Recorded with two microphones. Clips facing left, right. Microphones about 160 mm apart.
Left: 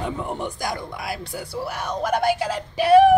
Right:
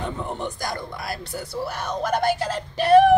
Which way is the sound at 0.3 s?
10° left (ahead or behind).